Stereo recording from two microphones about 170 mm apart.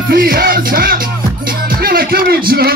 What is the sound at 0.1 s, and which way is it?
Music, 60° right (ahead or behind).